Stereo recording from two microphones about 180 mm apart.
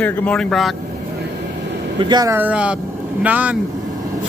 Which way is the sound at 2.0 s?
25° right (ahead or behind).